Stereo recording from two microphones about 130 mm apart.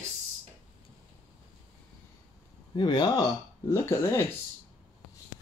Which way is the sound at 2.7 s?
35° left (ahead or behind).